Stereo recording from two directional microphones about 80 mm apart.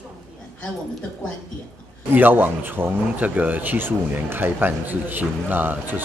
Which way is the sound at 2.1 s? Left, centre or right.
Right.